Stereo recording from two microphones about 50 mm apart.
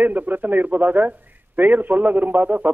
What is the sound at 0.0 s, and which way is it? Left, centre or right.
A man's voice, right.